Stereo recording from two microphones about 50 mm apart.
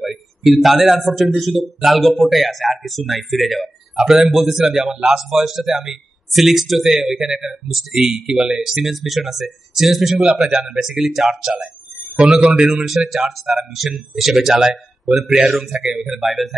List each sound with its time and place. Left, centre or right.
0.0 s speech: centre
3.9 s speech: centre
8.7 s speech: centre
11.1 s speech: centre
12.4 s speech: right
13.1 s speech: centre